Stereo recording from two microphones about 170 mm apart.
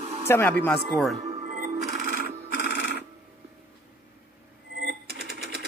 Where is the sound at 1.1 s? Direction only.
40° right (ahead or behind).